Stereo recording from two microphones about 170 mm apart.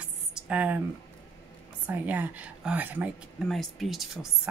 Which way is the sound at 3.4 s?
Centre (ahead or behind).